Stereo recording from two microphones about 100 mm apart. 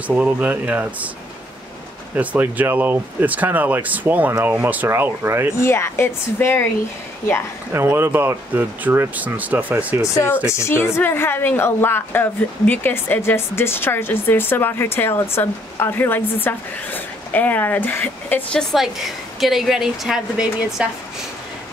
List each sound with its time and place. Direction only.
0.1 s speech: 15° right (ahead or behind)
2.1 s speech: 15° right (ahead or behind)
5.6 s speech: 25° left (ahead or behind)
7.7 s speech: 25° right (ahead or behind)
10.1 s speech: 25° left (ahead or behind)
18.6 s a woman's voice: centre (ahead or behind)